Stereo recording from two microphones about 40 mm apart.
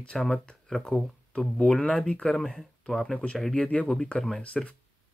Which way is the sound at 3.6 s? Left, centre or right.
Left.